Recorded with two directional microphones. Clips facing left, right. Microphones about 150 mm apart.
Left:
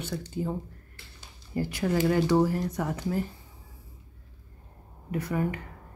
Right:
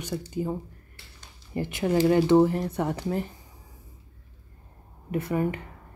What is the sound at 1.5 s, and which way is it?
Speech, 20° right (ahead or behind).